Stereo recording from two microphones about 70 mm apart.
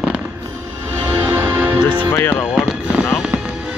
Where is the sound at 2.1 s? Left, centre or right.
Left.